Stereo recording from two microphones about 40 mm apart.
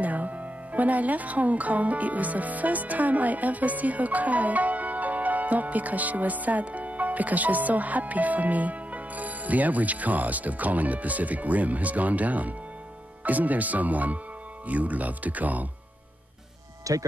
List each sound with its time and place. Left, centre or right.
0.0 s speech: right